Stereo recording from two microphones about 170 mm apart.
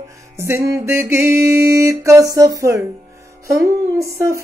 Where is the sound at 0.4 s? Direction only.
15° right (ahead or behind).